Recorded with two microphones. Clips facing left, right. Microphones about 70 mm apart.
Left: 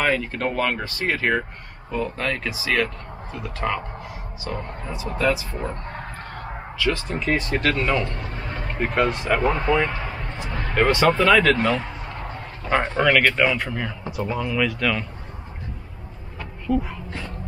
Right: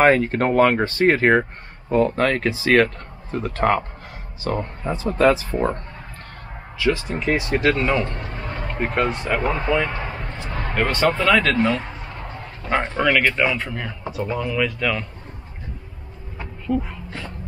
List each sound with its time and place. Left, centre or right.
0.0 s speech: right
6.9 s speech: centre
8.0 s speech: right
8.7 s speech: centre
9.9 s a sound: centre
10.7 s speech: centre
11.7 s a sound: centre
12.6 s speech: centre
16.6 s speech: centre